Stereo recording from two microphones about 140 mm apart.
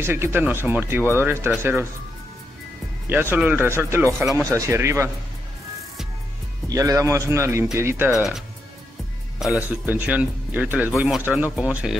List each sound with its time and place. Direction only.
0.0 s speech: 15° right (ahead or behind)
3.1 s a man's voice: 15° right (ahead or behind)
6.7 s a man's voice: 25° right (ahead or behind)
8.1 s speech: centre (ahead or behind)